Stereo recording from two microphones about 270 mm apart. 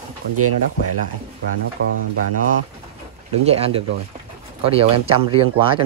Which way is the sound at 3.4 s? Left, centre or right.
Right.